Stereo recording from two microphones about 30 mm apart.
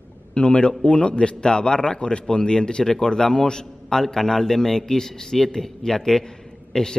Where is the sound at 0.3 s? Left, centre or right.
Left.